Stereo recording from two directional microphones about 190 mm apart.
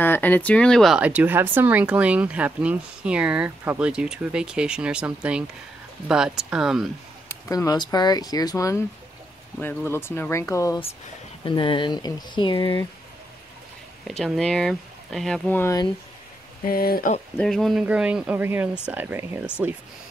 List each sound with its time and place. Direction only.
0.0 s speech: 10° left (ahead or behind)
7.4 s speech: 20° left (ahead or behind)
14.0 s speech: centre (ahead or behind)
16.6 s speech: 50° left (ahead or behind)
17.4 s speech: centre (ahead or behind)